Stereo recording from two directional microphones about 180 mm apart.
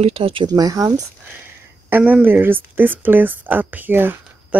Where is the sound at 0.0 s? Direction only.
30° right (ahead or behind).